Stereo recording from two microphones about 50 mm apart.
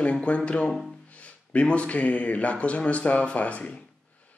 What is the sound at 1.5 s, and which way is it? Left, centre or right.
A man's voice, left.